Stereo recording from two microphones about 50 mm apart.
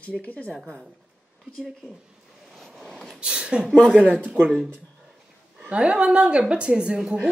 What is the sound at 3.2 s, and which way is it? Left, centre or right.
Speech, centre.